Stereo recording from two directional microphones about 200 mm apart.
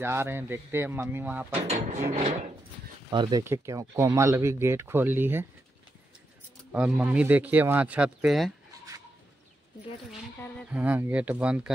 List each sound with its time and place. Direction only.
0.0 s speech: 10° right (ahead or behind)
1.7 s speech: 35° right (ahead or behind)
3.1 s speech: 20° right (ahead or behind)
6.7 s speech: 5° right (ahead or behind)
10.7 s speech: 10° right (ahead or behind)